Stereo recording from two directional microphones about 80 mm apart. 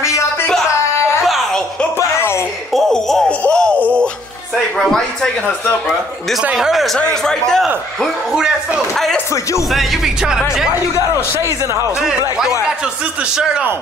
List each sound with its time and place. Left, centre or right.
0.0 s music: left
1.2 s a sound: centre
2.0 s a sound: left
2.7 s music: centre
4.7 s speech: centre
6.4 s speech: centre
7.0 s speech: centre
8.0 s speech: centre
9.3 s speech: left
9.7 s speech: centre
11.6 s a man's voice: right
12.0 s speech: centre